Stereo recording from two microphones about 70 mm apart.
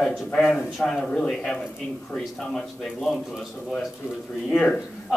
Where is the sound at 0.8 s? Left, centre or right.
Centre.